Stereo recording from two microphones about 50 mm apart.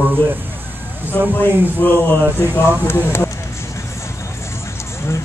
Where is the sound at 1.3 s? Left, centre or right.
Left.